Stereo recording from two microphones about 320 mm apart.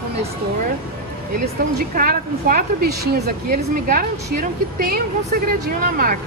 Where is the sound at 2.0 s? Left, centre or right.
Right.